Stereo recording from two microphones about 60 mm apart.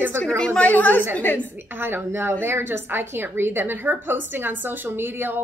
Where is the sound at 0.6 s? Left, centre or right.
Left.